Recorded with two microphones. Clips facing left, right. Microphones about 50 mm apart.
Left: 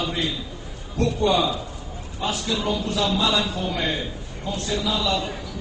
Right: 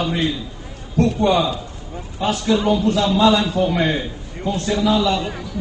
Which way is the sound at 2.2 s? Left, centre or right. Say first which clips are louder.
Right 7 dB; right.